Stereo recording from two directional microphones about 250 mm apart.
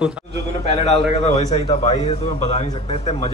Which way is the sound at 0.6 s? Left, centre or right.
Left.